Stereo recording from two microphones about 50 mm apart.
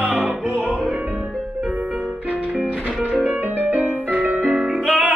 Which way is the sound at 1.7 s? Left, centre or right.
Right.